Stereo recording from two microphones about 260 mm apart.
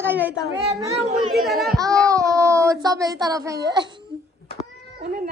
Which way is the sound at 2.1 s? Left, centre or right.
Centre.